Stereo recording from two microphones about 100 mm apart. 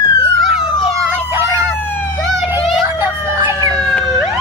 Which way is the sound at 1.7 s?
20° left (ahead or behind).